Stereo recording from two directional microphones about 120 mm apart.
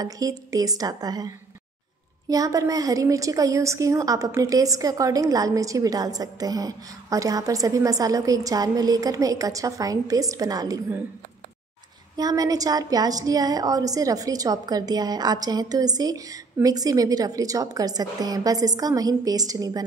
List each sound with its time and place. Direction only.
0.0 s a woman's voice: 30° right (ahead or behind)
12.2 s a woman's voice: 30° right (ahead or behind)